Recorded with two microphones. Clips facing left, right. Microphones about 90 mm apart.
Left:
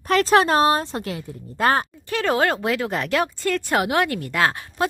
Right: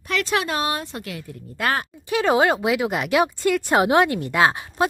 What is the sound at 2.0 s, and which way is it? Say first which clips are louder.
Speech: right 4 dB; 15° right (ahead or behind).